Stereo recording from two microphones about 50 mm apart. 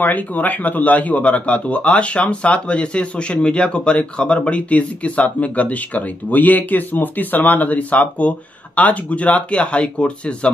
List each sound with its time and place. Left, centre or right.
0.0 s speech: left